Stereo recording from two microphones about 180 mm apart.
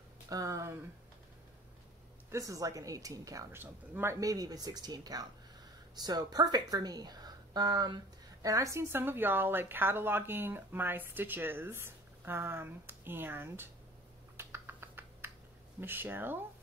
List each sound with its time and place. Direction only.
0.3 s speech: 20° right (ahead or behind)
2.3 s speech: 20° right (ahead or behind)
14.3 s typing: 15° right (ahead or behind)
15.8 s speech: 10° right (ahead or behind)